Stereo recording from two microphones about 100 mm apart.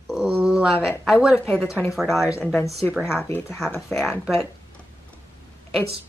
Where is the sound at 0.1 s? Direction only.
5° right (ahead or behind).